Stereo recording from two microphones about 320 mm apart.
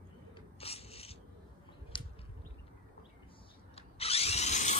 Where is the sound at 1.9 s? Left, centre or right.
Centre.